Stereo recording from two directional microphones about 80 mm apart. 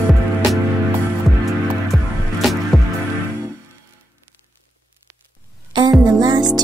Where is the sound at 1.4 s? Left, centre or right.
Centre.